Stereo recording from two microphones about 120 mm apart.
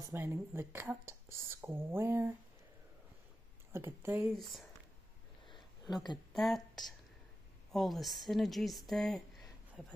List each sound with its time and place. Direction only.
0.1 s speech: 20° right (ahead or behind)
3.7 s speech: 20° right (ahead or behind)
4.4 s speech: centre (ahead or behind)
6.3 s a woman's voice: centre (ahead or behind)